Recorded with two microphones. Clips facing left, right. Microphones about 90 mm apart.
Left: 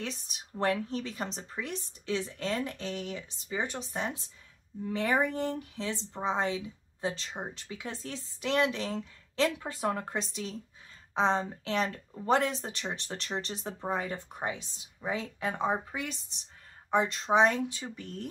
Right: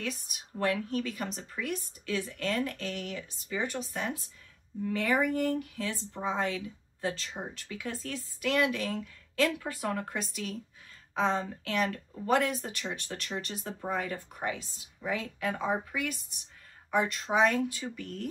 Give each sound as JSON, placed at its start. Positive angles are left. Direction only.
{"t": 0.0, "sound": "speech", "side_deg": 25}